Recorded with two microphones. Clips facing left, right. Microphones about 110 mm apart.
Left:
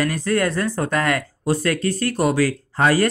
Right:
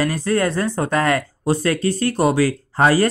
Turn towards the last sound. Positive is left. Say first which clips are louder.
# right 2 dB
turn(degrees=-30)  # may be behind; listen again after turning